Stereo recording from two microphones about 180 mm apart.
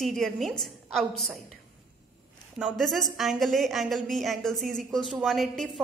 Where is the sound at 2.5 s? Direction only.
Centre (ahead or behind).